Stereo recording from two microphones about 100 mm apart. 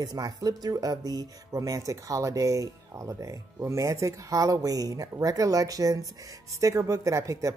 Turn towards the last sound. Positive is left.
turn(degrees=-30)  # may be behind; listen again after turning